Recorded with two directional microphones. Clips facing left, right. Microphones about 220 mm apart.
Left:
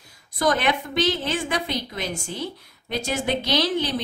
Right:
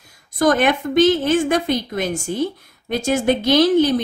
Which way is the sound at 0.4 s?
50° right (ahead or behind).